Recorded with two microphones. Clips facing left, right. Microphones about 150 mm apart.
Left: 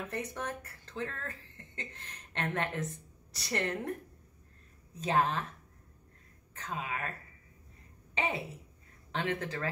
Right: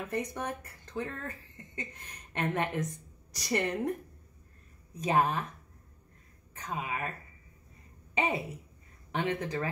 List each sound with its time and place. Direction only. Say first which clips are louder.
0.1 s speech: right 3 dB; 15° right (ahead or behind)
4.9 s speech: right 2 dB; 15° right (ahead or behind)
6.5 s speech: right 2 dB; 15° right (ahead or behind)
8.1 s a woman's voice: right 3 dB; 15° right (ahead or behind)